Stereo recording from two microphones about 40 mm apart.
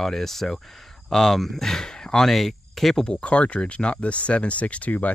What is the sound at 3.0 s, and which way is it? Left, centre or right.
Speech, left.